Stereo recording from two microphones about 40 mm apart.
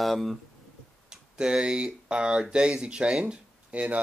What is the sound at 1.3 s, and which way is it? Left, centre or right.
Speech, right.